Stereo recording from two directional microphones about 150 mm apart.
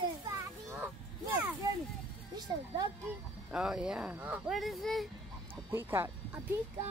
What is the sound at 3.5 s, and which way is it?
Speech, 5° right (ahead or behind).